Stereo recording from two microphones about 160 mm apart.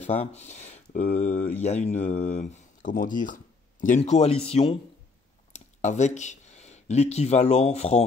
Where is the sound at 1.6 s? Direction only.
45° left (ahead or behind).